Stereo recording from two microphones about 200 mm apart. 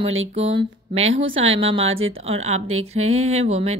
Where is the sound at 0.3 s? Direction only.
30° right (ahead or behind).